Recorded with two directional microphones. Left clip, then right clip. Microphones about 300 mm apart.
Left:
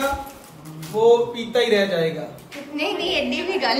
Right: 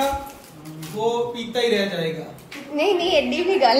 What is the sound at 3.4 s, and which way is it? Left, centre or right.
Speech, centre.